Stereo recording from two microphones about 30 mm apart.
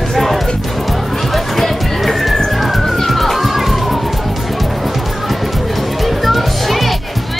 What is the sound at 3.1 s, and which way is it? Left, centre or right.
Children playing, centre.